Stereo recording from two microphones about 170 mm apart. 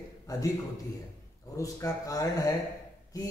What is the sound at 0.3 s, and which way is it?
Speech, 20° left (ahead or behind).